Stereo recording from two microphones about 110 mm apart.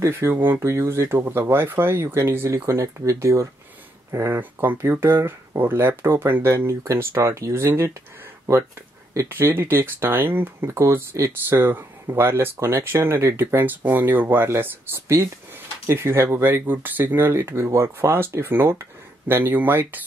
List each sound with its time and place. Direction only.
0.0 s speech: 20° right (ahead or behind)
9.1 s speech: 25° right (ahead or behind)